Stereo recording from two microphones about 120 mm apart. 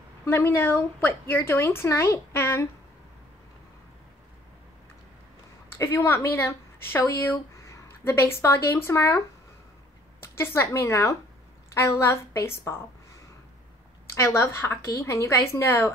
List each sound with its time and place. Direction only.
0.2 s a woman's voice: 20° left (ahead or behind)
5.8 s a woman's voice: 20° left (ahead or behind)
10.2 s a woman's voice: 20° left (ahead or behind)